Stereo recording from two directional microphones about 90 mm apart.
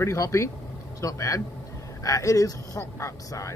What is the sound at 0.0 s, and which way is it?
Speech, 35° left (ahead or behind).